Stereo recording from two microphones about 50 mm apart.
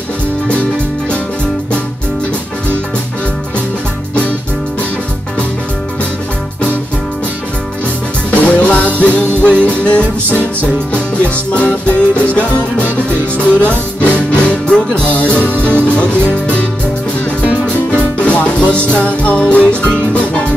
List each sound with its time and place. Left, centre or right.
8.3 s music: left
17.4 s music: right
18.2 s music: left